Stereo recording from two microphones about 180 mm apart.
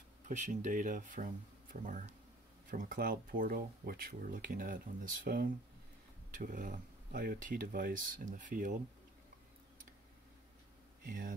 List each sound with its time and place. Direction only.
0.3 s speech: 40° right (ahead or behind)
11.1 s speech: 50° right (ahead or behind)